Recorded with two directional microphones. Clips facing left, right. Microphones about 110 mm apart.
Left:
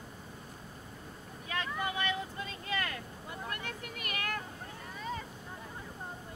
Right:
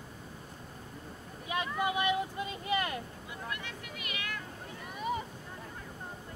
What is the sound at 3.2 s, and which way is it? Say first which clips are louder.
Vehicle: even; 45° left (ahead or behind).